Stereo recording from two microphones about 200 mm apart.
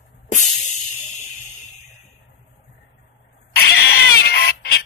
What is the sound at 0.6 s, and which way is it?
Music, 90° left.